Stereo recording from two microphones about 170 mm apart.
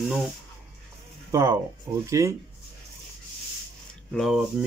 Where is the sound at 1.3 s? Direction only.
15° right (ahead or behind).